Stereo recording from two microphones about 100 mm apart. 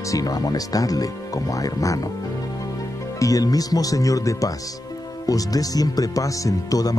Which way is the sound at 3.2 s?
35° left (ahead or behind).